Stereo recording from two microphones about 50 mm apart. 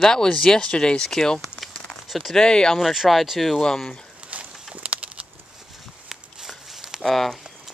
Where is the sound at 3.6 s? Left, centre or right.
Centre.